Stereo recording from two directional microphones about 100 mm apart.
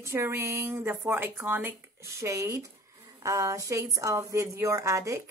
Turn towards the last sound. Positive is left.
turn(degrees=-30)  # may be behind; listen again after turning